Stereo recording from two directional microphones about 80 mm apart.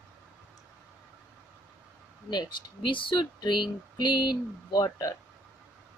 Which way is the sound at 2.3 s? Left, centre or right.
Left.